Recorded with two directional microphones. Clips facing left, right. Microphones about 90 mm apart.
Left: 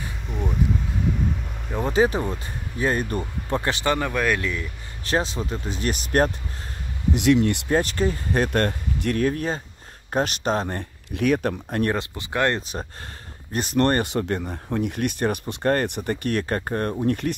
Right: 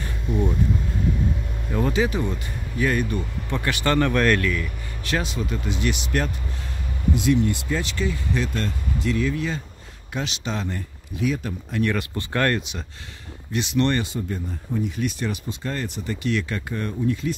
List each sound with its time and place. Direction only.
1.9 s speech: 35° left (ahead or behind)
3.8 s speech: 15° left (ahead or behind)
4.4 s speech: 20° left (ahead or behind)
5.0 s speech: 35° left (ahead or behind)
7.2 s speech: 70° left (ahead or behind)
7.6 s speech: 50° left (ahead or behind)
11.1 s speech: 60° left (ahead or behind)
12.2 s speech: 15° left (ahead or behind)
12.5 s speech: 40° left (ahead or behind)
14.0 s speech: 70° left (ahead or behind)